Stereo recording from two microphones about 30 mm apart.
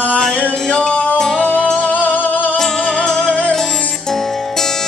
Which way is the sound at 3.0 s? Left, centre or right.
Left.